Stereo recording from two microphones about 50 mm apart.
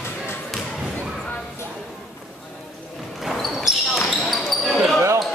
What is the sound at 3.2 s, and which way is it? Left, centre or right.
Basketball bounce, centre.